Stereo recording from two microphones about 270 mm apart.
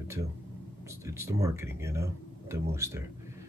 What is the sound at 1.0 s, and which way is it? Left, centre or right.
Speech, centre.